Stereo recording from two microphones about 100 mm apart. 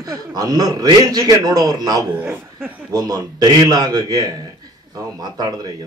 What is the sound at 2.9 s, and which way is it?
A man's voice, 40° right (ahead or behind).